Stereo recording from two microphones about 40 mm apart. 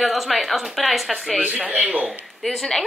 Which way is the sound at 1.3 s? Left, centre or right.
Right.